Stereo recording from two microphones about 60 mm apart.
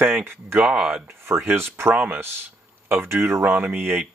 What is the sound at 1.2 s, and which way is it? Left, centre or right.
Speech, right.